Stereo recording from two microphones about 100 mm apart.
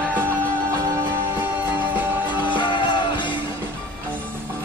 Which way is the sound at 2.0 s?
20° right (ahead or behind).